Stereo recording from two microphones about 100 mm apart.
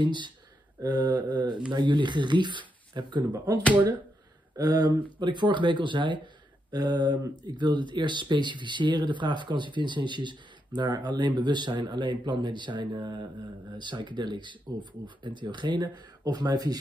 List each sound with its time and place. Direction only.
0.0 s speech: 50° right (ahead or behind)
4.6 s speech: 40° right (ahead or behind)
6.7 s speech: 40° right (ahead or behind)